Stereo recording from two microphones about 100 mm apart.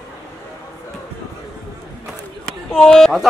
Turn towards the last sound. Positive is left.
turn(degrees=5)  # may be behind; listen again after turning